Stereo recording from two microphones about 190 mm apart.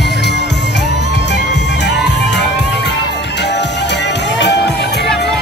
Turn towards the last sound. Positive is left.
turn(degrees=65)  # may be behind; listen again after turning